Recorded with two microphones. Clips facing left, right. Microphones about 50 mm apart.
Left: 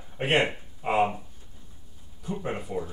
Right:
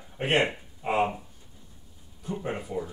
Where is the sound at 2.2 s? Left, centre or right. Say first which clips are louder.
Even; centre.